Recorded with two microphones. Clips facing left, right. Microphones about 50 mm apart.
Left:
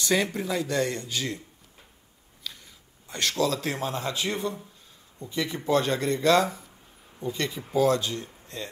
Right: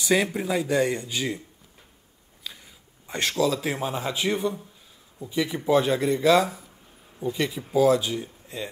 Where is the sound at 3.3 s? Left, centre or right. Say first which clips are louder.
Right 2 dB; centre.